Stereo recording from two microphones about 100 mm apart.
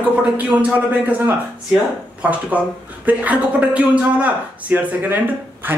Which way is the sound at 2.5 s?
15° right (ahead or behind).